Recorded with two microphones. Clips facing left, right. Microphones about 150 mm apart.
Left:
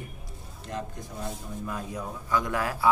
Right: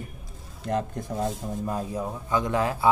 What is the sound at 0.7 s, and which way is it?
Speech, 55° right (ahead or behind).